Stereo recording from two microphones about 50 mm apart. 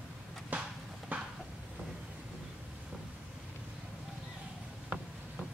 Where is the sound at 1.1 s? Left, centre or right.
Right.